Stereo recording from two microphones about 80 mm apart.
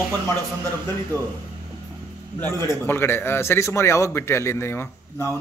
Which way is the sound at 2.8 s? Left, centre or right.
Left.